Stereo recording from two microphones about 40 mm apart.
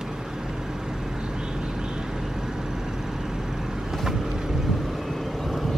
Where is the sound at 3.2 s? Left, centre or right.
Centre.